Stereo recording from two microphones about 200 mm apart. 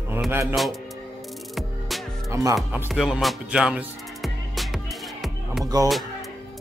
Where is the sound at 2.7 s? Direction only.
5° right (ahead or behind).